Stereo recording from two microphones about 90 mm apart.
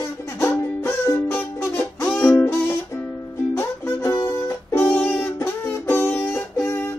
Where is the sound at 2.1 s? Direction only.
35° left (ahead or behind).